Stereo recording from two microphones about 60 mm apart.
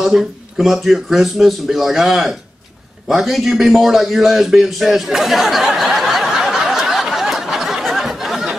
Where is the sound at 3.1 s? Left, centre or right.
Centre.